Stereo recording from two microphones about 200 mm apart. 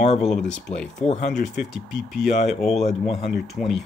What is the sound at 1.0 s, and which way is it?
Speech, 35° left (ahead or behind).